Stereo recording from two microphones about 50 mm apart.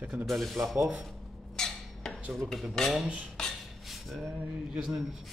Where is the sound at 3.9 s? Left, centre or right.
Centre.